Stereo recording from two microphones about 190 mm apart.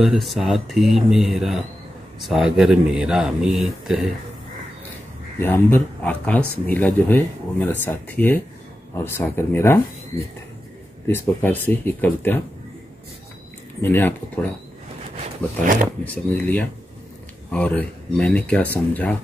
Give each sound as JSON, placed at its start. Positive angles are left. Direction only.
{"t": 0.0, "sound": "speech", "side_deg": 0}
{"t": 5.4, "sound": "speech", "side_deg": 10}
{"t": 11.1, "sound": "speech", "side_deg": 10}
{"t": 13.7, "sound": "speech", "side_deg": 10}
{"t": 15.1, "sound": "speech", "side_deg": -45}
{"t": 16.0, "sound": "speech", "side_deg": 10}